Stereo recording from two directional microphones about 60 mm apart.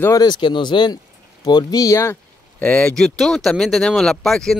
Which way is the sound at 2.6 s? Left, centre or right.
Left.